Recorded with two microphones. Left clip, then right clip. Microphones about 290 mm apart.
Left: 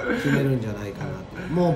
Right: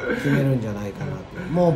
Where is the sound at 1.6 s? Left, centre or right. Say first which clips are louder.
Right 4 dB; centre.